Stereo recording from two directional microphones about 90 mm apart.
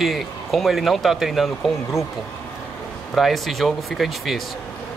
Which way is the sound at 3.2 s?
Centre (ahead or behind).